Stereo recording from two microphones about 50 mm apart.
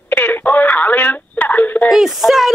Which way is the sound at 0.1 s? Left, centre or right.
Left.